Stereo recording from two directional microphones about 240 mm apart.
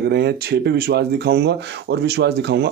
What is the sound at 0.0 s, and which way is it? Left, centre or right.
Speech, right.